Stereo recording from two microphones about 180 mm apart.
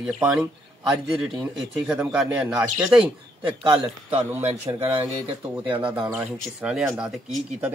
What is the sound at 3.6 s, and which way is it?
A man's voice, 25° right (ahead or behind).